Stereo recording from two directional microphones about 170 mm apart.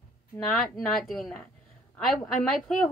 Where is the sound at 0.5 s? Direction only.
Centre (ahead or behind).